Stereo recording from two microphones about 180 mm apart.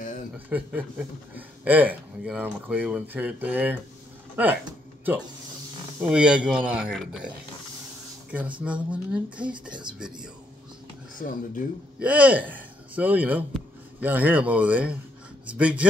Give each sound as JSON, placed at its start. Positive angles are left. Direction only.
{"t": 0.5, "sound": "speech", "side_deg": -10}
{"t": 6.0, "sound": "speech", "side_deg": -5}
{"t": 11.1, "sound": "speech", "side_deg": 50}
{"t": 12.0, "sound": "speech", "side_deg": -5}